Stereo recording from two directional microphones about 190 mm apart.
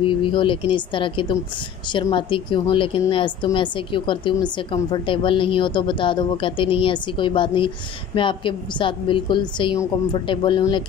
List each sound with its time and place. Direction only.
0.0 s a woman's voice: 25° left (ahead or behind)